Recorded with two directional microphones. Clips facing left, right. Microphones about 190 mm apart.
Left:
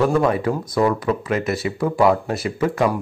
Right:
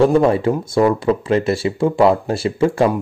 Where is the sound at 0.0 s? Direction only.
25° right (ahead or behind).